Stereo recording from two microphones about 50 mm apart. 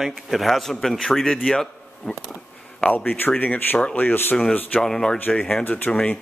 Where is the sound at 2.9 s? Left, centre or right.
Left.